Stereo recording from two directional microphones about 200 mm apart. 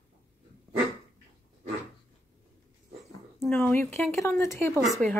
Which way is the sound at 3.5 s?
10° left (ahead or behind).